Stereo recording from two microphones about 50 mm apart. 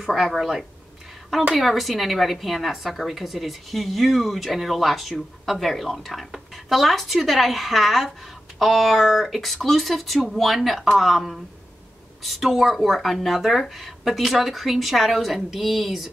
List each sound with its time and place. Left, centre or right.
0.0 s speech: centre